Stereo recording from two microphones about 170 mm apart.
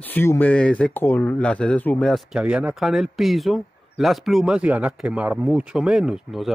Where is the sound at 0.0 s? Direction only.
10° left (ahead or behind).